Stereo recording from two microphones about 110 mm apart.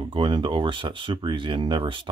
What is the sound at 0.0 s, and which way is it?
Speech, 50° right (ahead or behind).